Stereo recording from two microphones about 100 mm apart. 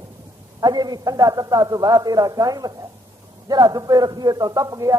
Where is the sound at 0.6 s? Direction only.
40° right (ahead or behind).